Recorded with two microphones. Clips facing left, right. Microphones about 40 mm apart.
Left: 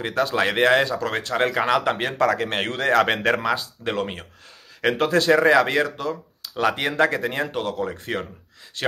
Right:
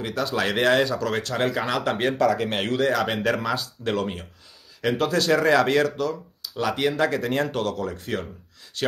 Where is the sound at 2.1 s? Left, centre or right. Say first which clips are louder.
Left 1 dB; left.